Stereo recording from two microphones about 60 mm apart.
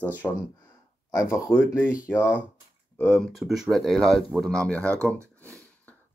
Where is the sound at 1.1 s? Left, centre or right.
Left.